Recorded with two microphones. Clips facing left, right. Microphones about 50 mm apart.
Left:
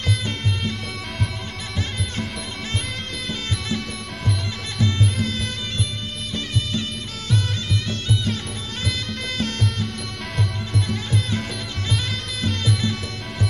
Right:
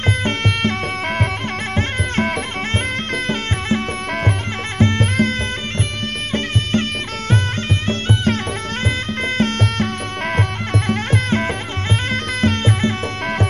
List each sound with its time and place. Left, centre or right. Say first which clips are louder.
0.0 s music: right 7 dB; right
6.3 s music: right 7 dB; right